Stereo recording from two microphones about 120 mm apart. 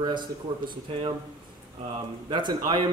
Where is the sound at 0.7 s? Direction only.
50° right (ahead or behind).